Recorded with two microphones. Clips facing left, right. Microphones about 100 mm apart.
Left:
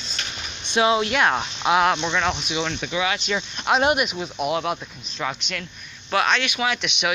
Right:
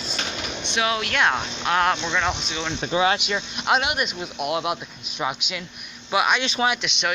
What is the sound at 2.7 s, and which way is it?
Speech, 35° right (ahead or behind).